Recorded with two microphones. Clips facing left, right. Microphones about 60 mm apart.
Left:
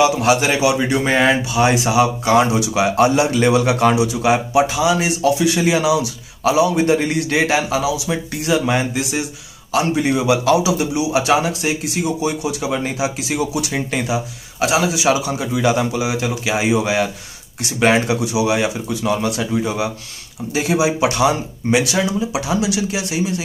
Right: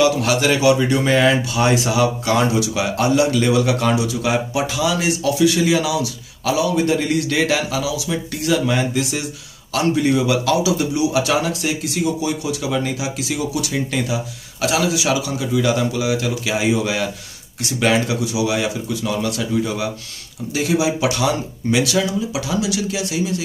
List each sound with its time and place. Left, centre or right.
0.0 s speech: left